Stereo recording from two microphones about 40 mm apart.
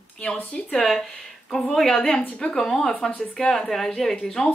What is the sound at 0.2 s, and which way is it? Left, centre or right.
Speech, left.